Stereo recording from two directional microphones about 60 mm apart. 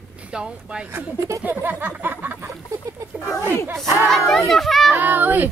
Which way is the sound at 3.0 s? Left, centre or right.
Right.